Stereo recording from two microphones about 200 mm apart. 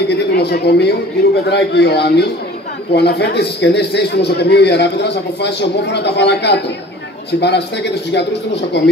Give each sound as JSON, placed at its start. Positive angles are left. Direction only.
{"t": 0.1, "sound": "a man's voice", "side_deg": 55}